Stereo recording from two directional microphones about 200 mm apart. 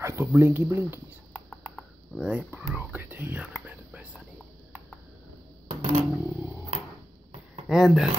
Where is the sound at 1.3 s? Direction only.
5° left (ahead or behind).